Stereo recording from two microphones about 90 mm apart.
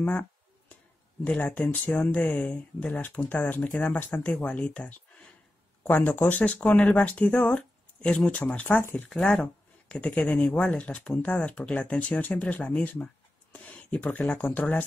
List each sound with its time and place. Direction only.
0.0 s speech: 15° left (ahead or behind)